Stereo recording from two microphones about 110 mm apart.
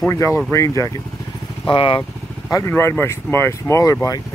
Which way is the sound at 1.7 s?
50° left (ahead or behind).